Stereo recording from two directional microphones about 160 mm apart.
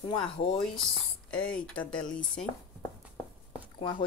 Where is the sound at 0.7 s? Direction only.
5° left (ahead or behind).